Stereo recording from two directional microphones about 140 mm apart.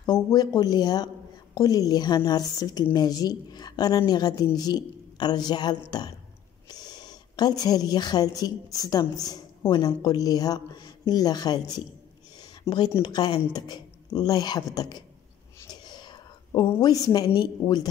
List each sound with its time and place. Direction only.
0.0 s a woman's voice: 30° left (ahead or behind)
12.4 s a sound: 30° left (ahead or behind)
13.0 s a woman's voice: 30° left (ahead or behind)
15.7 s whispering: 30° left (ahead or behind)
16.8 s a woman's voice: 25° left (ahead or behind)